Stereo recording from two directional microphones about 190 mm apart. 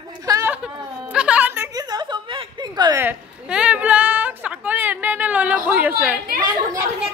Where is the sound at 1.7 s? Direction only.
20° right (ahead or behind).